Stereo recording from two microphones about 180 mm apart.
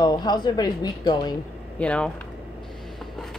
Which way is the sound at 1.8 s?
5° left (ahead or behind).